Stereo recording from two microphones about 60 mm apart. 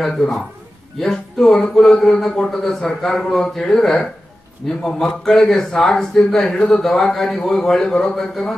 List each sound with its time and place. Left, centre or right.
0.9 s speech: centre